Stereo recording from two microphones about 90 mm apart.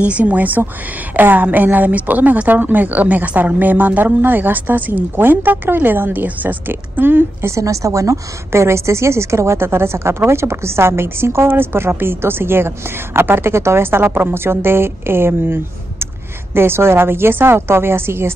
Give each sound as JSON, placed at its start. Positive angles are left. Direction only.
{"t": 0.0, "sound": "a woman's voice", "side_deg": -15}
{"t": 7.5, "sound": "a woman's voice", "side_deg": -35}